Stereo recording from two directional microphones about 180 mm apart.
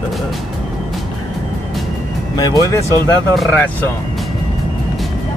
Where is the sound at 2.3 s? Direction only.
20° left (ahead or behind).